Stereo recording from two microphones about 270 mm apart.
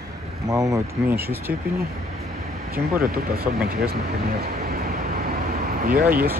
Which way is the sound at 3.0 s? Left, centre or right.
Right.